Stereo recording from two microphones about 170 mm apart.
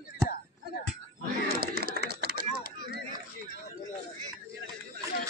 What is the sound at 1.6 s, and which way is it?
Typing, 65° right (ahead or behind).